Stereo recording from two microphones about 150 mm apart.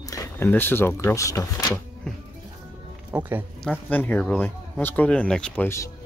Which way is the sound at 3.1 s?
10° right (ahead or behind).